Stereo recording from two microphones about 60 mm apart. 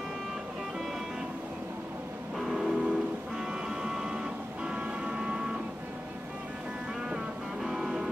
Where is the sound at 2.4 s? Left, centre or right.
Centre.